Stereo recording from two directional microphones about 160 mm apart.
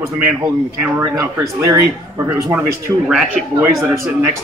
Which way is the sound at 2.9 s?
10° right (ahead or behind).